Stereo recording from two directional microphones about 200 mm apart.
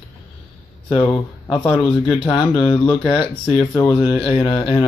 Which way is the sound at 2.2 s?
25° left (ahead or behind).